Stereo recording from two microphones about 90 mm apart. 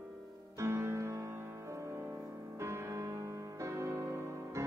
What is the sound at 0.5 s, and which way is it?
Music, 30° right (ahead or behind).